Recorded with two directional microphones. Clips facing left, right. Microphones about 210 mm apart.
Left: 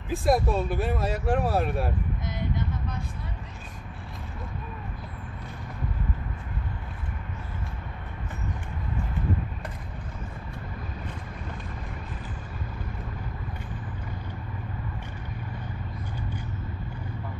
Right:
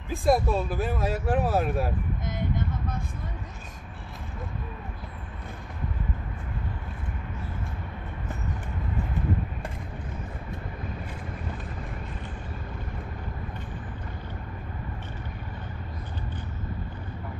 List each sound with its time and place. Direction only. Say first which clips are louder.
0.1 s speech: even; centre (ahead or behind)
2.2 s vehicle: right 2 dB; 50° right (ahead or behind)